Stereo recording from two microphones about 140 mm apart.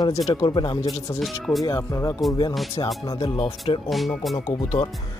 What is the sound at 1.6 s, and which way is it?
Speech, 25° left (ahead or behind).